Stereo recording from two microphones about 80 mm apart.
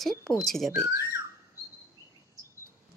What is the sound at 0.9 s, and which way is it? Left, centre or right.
Speech, right.